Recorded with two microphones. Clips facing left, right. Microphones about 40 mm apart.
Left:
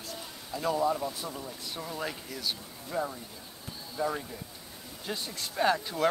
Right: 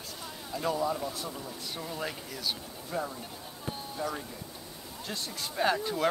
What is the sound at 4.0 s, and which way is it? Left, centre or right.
Speech, centre.